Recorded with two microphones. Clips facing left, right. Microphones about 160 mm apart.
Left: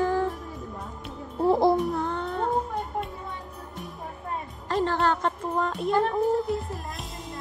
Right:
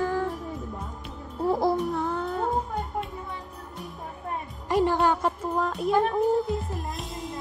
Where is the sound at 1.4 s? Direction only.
25° left (ahead or behind).